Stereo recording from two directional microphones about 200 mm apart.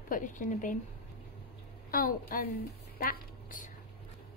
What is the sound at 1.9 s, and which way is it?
Speech, 45° left (ahead or behind).